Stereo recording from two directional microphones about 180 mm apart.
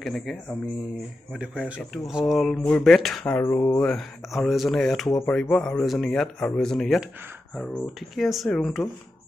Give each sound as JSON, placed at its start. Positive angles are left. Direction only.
{"t": 0.0, "sound": "speech", "side_deg": 0}
{"t": 3.3, "sound": "speech", "side_deg": 15}
{"t": 3.8, "sound": "speech", "side_deg": 5}